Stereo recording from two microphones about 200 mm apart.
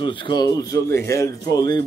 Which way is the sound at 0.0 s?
25° left (ahead or behind).